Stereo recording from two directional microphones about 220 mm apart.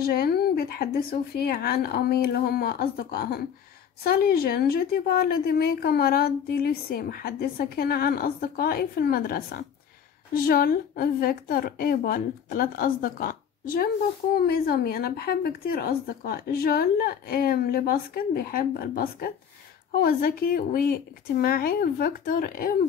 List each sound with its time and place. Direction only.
0.0 s a woman's voice: 45° left (ahead or behind)